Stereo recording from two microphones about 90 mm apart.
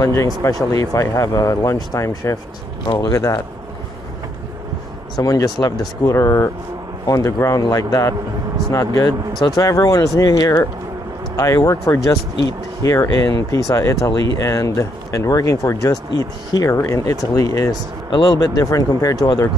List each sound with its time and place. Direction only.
0.0 s speech: 35° left (ahead or behind)
5.1 s speech: 40° left (ahead or behind)